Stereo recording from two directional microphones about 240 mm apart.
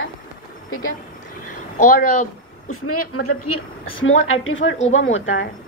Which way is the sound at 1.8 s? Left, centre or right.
Left.